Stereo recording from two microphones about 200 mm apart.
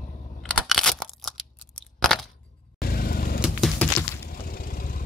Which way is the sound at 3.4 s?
Centre (ahead or behind).